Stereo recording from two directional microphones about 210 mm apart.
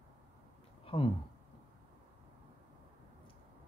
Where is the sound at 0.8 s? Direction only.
25° left (ahead or behind).